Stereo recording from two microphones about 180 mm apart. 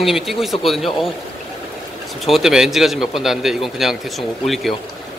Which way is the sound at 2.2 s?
Centre (ahead or behind).